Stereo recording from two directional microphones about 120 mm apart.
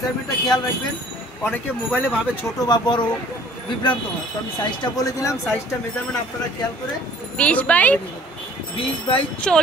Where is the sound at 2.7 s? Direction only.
35° left (ahead or behind).